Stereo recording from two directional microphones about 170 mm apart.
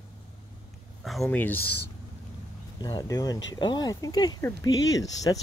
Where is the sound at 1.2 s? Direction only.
10° left (ahead or behind).